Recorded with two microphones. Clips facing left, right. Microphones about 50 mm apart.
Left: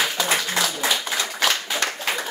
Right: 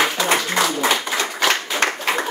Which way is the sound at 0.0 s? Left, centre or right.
Right.